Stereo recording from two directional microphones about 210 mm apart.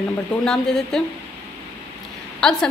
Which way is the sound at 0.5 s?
Centre (ahead or behind).